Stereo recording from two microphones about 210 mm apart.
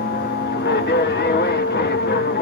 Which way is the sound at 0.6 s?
55° left (ahead or behind).